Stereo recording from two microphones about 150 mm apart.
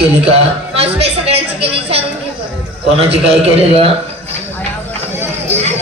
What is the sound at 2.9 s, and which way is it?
Speech, 40° right (ahead or behind).